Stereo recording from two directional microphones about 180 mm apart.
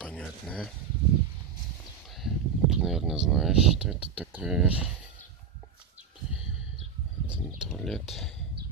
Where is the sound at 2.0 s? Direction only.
Centre (ahead or behind).